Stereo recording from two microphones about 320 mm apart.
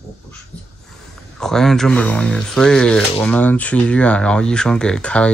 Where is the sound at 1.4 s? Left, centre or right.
Centre.